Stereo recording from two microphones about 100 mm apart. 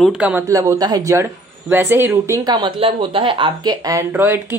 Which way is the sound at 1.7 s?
20° right (ahead or behind).